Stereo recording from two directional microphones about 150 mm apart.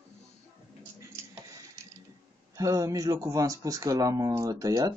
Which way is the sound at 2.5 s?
20° right (ahead or behind).